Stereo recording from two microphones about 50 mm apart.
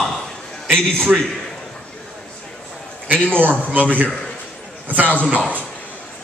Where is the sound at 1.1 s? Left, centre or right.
Right.